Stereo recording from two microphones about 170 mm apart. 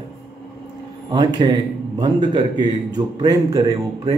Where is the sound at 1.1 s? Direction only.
25° right (ahead or behind).